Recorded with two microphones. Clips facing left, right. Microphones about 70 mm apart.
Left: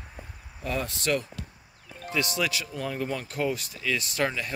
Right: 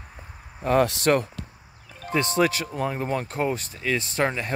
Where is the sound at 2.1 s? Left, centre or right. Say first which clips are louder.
Right 6 dB; right.